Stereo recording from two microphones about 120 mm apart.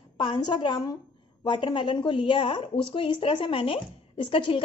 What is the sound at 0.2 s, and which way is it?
A woman's voice, 45° left (ahead or behind).